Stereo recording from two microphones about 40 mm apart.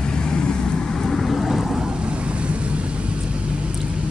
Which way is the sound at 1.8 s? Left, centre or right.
Right.